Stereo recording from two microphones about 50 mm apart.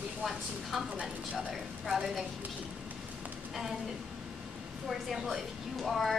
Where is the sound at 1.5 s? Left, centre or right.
Centre.